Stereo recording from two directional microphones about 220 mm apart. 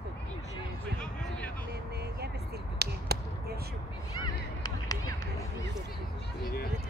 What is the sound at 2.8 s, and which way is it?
Basketball bounce, 45° right (ahead or behind).